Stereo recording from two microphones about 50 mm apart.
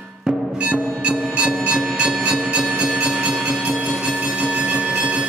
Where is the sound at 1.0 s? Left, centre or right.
Right.